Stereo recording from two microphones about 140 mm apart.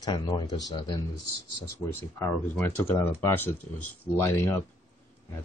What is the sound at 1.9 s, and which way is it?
Speech, 15° left (ahead or behind).